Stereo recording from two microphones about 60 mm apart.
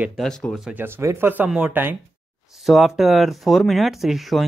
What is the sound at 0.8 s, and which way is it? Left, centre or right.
Speech, right.